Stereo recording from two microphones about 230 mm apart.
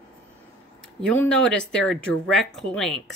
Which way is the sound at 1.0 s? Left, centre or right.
Centre.